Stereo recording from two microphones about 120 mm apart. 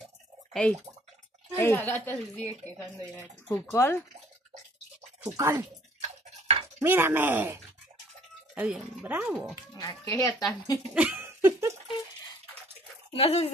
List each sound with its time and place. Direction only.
0.5 s a woman's voice: 10° left (ahead or behind)
5.2 s speech: 20° right (ahead or behind)
5.9 s a sound: 55° right (ahead or behind)
6.8 s speech: 20° right (ahead or behind)
9.8 s speech: 30° left (ahead or behind)
11.0 s a sound: 15° right (ahead or behind)
13.1 s speech: 60° left (ahead or behind)